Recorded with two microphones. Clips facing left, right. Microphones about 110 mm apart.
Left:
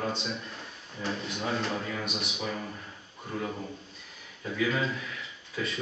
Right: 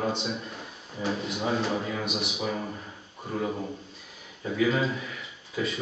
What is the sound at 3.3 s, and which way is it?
A man's voice, 15° right (ahead or behind).